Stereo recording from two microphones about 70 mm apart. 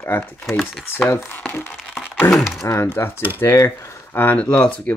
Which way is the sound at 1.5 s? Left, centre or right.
Left.